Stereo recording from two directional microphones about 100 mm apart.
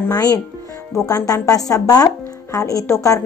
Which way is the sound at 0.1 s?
40° left (ahead or behind).